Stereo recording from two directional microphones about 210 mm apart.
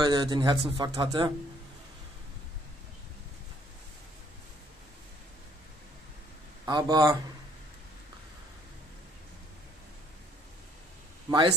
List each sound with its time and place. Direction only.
0.0 s a man's voice: 20° right (ahead or behind)
6.6 s a man's voice: 20° right (ahead or behind)
11.2 s speech: 20° right (ahead or behind)